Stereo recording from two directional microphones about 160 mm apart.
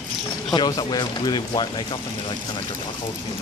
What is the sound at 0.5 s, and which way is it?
Speech, 25° left (ahead or behind).